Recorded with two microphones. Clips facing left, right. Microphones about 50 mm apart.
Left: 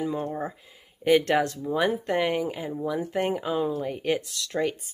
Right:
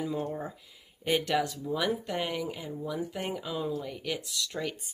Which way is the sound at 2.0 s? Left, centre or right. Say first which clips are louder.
Left 7 dB; left.